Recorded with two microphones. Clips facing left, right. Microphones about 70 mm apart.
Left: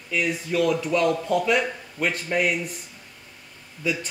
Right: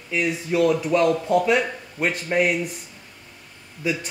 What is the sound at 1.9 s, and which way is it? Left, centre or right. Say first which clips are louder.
Speech: right 3 dB; centre.